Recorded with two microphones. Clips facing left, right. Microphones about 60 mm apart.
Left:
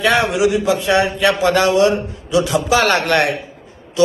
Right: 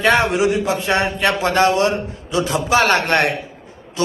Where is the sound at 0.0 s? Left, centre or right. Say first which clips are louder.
Even; right.